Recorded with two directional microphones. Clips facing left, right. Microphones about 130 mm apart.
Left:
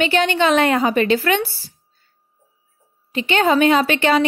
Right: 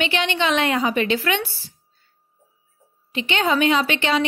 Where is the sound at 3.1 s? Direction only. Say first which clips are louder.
Left 4 dB; 45° left (ahead or behind).